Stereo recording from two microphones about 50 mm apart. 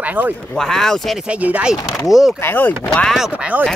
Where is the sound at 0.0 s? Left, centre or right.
Right.